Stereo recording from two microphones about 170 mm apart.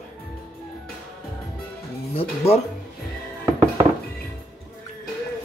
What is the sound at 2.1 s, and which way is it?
Speech, 35° left (ahead or behind).